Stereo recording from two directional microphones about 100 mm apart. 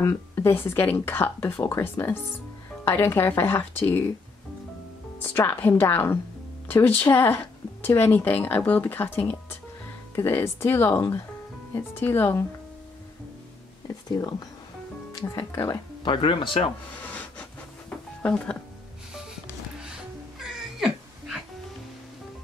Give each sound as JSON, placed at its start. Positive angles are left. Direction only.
{"t": 0.0, "sound": "speech", "side_deg": 25}
{"t": 5.2, "sound": "speech", "side_deg": 25}
{"t": 15.1, "sound": "speech", "side_deg": 30}
{"t": 16.0, "sound": "speech", "side_deg": 55}
{"t": 17.0, "sound": "music", "side_deg": 15}